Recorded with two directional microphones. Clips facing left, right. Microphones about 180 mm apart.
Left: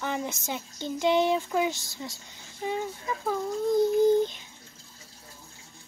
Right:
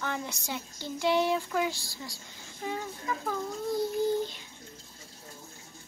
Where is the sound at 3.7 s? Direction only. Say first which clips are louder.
Left 7 dB; 20° left (ahead or behind).